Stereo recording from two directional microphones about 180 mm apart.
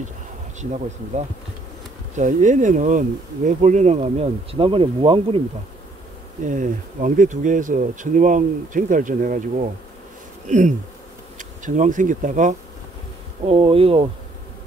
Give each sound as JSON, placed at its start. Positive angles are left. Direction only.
{"t": 2.1, "sound": "speech", "side_deg": -45}
{"t": 6.4, "sound": "speech", "side_deg": -45}
{"t": 10.5, "sound": "speech", "side_deg": -45}
{"t": 13.5, "sound": "speech", "side_deg": -30}